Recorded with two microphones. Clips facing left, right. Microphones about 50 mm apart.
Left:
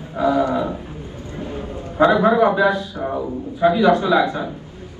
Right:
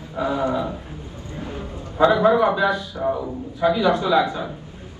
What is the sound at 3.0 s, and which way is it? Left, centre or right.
Speech, centre.